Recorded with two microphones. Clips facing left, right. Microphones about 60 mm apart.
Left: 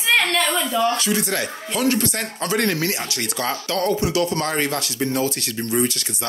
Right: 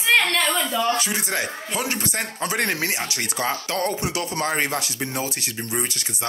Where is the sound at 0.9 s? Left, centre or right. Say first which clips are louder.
Left 3 dB; right.